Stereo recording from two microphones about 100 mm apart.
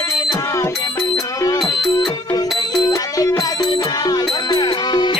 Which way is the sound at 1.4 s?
35° left (ahead or behind).